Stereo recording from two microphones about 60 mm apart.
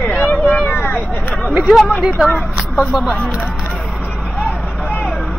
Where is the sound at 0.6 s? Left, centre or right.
Left.